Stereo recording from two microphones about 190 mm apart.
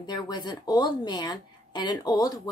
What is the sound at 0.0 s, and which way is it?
Speech, 20° left (ahead or behind).